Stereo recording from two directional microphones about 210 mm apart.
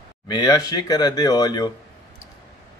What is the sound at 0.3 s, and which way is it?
Speech, 20° left (ahead or behind).